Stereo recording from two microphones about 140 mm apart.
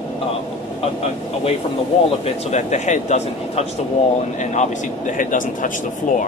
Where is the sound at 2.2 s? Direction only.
55° left (ahead or behind).